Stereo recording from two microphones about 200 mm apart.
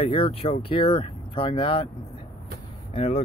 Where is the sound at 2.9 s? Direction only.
30° left (ahead or behind).